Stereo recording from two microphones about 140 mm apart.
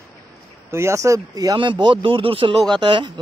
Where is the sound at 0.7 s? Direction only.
20° right (ahead or behind).